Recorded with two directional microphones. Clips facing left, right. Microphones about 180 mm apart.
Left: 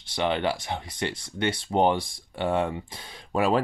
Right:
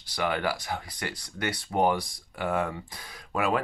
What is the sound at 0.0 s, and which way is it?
Speech, 25° left (ahead or behind).